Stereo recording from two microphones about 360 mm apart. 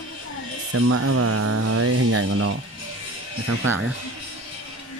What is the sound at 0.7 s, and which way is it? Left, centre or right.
Speech, right.